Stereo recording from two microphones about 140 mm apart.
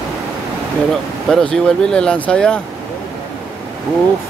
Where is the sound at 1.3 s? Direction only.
5° left (ahead or behind).